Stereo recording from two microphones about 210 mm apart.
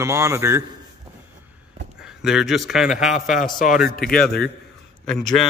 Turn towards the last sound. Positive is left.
turn(degrees=0)  # may be behind; listen again after turning